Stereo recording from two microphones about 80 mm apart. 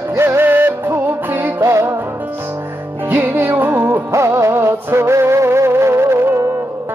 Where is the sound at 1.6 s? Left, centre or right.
Right.